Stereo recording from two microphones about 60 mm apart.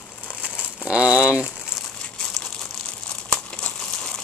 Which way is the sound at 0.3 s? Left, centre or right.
Centre.